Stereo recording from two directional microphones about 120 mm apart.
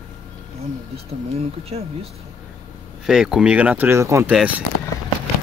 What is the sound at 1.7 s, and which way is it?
Speech, 60° right (ahead or behind).